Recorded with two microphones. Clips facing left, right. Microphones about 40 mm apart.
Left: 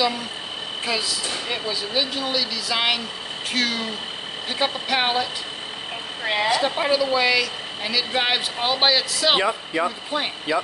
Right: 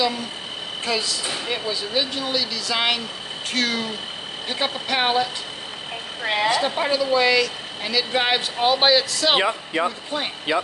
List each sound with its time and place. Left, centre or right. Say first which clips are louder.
0.8 s a woman's voice: right 1 dB; centre
10.5 s speech: right 1 dB; right